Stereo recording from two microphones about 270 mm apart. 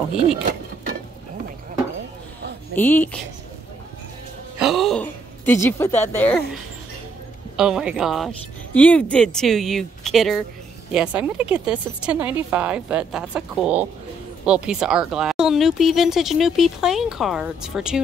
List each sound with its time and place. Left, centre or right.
2.7 s speech: centre
4.6 s a sound: centre
7.5 s speech: centre